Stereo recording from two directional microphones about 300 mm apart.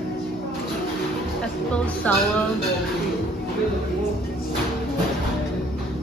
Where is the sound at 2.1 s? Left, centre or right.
Centre.